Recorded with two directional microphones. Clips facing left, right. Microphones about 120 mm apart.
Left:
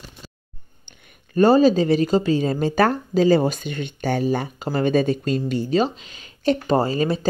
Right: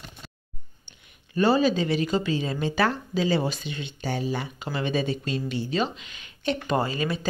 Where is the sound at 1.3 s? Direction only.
45° left (ahead or behind).